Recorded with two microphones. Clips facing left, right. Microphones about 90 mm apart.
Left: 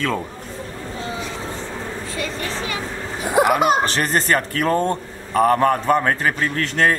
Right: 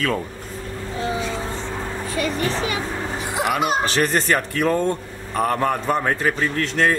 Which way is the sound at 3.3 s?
45° left (ahead or behind).